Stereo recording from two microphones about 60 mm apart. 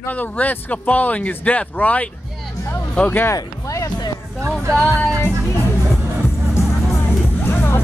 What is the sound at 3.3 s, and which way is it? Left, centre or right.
Speech, left.